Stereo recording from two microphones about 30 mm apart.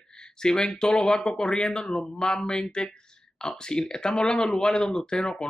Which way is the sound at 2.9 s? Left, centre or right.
Left.